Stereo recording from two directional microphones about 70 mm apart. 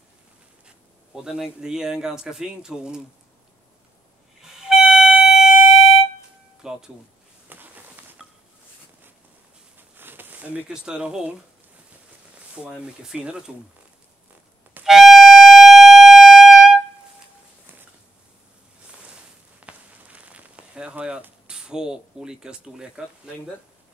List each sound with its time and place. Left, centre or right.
1.1 s speech: centre
4.4 s music: centre
6.6 s speech: centre
7.4 s a sound: right
9.8 s a sound: right
10.7 s speech: centre
12.6 s speech: centre
14.9 s music: centre
19.6 s a sound: centre
21.5 s speech: centre